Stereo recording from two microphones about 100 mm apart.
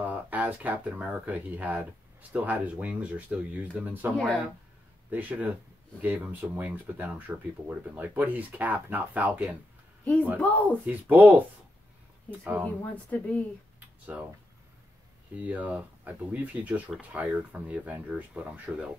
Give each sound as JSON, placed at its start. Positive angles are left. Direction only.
{"t": 0.0, "sound": "speech", "side_deg": -15}
{"t": 5.1, "sound": "speech", "side_deg": -15}
{"t": 10.4, "sound": "speech", "side_deg": 15}
{"t": 10.9, "sound": "speech", "side_deg": -15}
{"t": 12.9, "sound": "speech", "side_deg": 15}
{"t": 13.7, "sound": "a sound", "side_deg": -15}
{"t": 15.3, "sound": "speech", "side_deg": -15}